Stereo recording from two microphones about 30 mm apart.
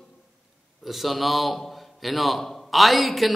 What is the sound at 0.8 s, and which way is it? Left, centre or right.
A man's voice, centre.